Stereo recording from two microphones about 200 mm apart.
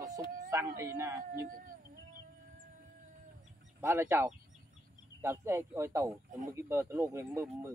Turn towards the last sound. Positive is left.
turn(degrees=-15)  # may be behind; listen again after turning